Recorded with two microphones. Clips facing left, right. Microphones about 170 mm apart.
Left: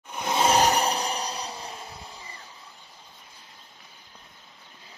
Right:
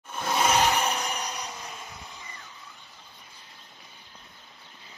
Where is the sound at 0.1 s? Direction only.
20° left (ahead or behind).